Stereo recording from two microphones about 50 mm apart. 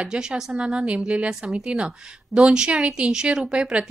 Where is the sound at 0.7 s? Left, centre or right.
Right.